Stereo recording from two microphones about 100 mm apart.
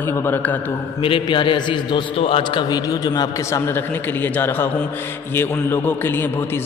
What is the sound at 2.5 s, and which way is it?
Speech, 40° left (ahead or behind).